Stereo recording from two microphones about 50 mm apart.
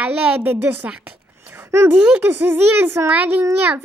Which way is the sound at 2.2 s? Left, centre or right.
Right.